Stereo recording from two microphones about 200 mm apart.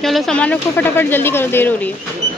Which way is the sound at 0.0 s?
Centre (ahead or behind).